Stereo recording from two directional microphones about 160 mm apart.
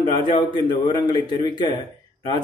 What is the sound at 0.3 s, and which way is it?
A man's voice, 30° left (ahead or behind).